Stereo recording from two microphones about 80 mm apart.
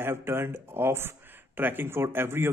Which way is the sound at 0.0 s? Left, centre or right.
Right.